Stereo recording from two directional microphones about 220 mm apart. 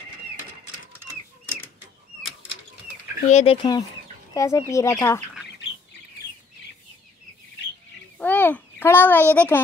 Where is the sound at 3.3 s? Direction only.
30° left (ahead or behind).